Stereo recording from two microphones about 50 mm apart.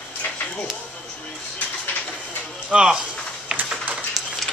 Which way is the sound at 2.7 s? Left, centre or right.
Centre.